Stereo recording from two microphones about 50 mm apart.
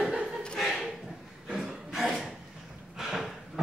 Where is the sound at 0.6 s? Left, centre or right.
Centre.